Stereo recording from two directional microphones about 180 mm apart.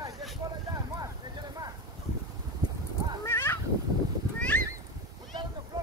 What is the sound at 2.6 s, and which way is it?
Clip-clop, 20° right (ahead or behind).